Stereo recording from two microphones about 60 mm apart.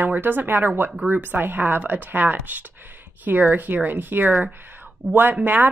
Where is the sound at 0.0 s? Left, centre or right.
Right.